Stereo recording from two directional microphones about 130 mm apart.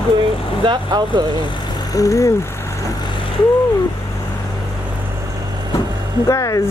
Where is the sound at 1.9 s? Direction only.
25° left (ahead or behind).